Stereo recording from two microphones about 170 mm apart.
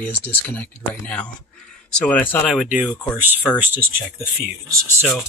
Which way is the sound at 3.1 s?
10° right (ahead or behind).